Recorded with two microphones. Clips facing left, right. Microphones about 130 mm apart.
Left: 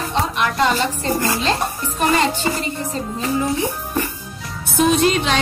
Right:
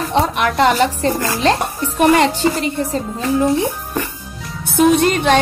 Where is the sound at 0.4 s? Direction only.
60° right (ahead or behind).